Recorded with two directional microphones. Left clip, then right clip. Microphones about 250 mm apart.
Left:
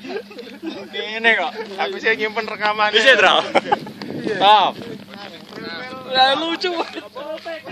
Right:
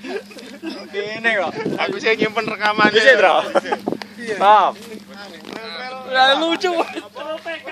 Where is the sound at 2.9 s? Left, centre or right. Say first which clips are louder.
Left 1 dB; left.